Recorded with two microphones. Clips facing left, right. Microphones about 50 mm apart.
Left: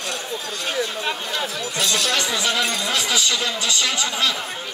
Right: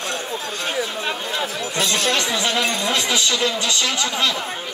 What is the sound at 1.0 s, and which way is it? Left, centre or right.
Speech, centre.